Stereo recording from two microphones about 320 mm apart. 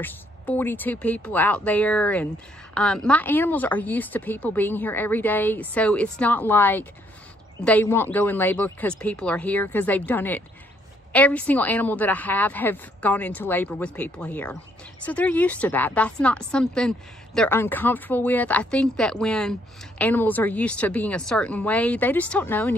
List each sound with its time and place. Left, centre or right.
0.0 s a woman's voice: centre